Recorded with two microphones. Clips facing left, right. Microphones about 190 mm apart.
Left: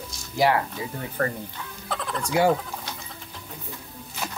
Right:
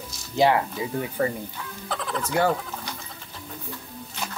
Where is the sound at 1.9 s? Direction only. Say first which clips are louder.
Even; centre (ahead or behind).